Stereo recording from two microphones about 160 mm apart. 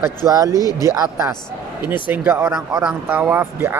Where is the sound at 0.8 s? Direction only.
20° right (ahead or behind).